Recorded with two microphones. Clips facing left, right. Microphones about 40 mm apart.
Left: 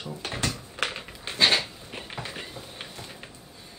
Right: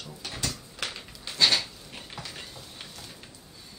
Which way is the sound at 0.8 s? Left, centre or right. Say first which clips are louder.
Left 7 dB; left.